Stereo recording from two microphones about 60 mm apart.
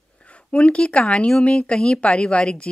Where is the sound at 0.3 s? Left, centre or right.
Centre.